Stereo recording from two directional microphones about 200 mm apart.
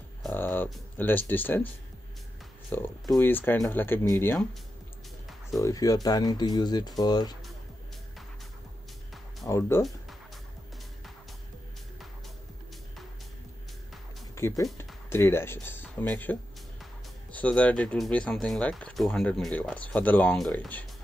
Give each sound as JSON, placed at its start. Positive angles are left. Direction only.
{"t": 0.2, "sound": "a sound", "side_deg": 10}
{"t": 2.7, "sound": "speech", "side_deg": 10}
{"t": 5.5, "sound": "speech", "side_deg": 15}
{"t": 9.5, "sound": "speech", "side_deg": 15}
{"t": 14.6, "sound": "speech", "side_deg": 10}